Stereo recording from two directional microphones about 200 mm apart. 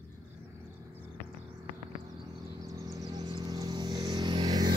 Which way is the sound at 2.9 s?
20° right (ahead or behind).